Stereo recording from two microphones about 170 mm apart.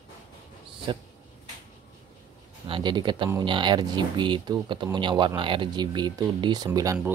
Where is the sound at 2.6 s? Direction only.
30° right (ahead or behind).